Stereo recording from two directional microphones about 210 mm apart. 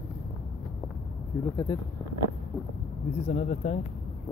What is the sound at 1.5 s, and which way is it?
Speech, 20° left (ahead or behind).